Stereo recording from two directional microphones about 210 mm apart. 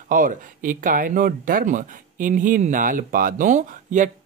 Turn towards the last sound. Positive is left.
turn(degrees=-35)  # may be behind; listen again after turning